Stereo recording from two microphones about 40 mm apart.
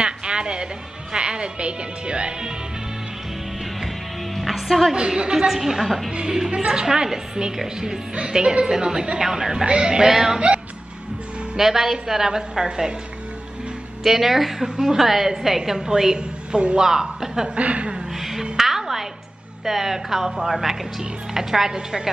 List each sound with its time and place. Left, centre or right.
0.0 s music: right
1.1 s speech: right
4.4 s music: centre
4.9 s speech: right
5.5 s a woman's voice: centre
6.3 s a woman's voice: centre
9.7 s speech: right
10.0 s a woman's voice: centre
11.5 s a woman's voice: centre
14.0 s a woman's voice: centre
16.2 s speech: right
16.8 s a woman's voice: centre
17.6 s a woman's voice: right
17.9 s a woman's voice: centre